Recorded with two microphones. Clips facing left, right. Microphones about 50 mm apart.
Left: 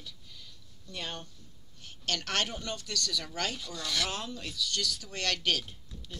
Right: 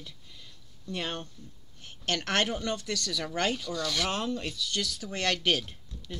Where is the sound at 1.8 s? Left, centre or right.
Right.